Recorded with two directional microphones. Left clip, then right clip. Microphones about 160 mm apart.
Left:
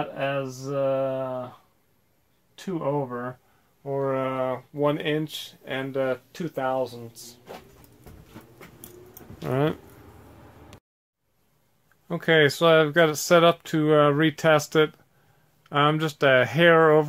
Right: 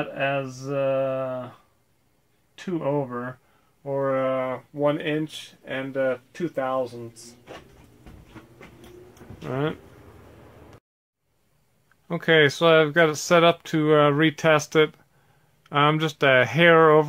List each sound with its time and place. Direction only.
0.0 s speech: 5° right (ahead or behind)
2.7 s speech: centre (ahead or behind)
3.8 s speech: 25° left (ahead or behind)
9.1 s keys jangling: 55° left (ahead or behind)
12.1 s speech: 5° left (ahead or behind)